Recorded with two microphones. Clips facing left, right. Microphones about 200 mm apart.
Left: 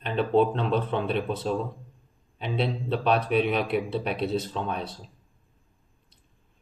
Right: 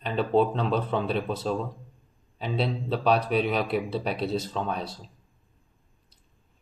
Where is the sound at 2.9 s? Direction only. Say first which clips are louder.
Even; centre (ahead or behind).